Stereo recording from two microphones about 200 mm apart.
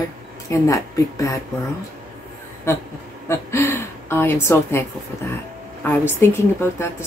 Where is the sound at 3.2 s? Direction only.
15° left (ahead or behind).